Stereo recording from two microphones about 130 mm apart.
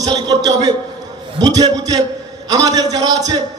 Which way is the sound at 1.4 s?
30° right (ahead or behind).